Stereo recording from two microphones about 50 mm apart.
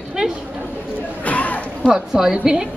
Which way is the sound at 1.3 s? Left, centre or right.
Left.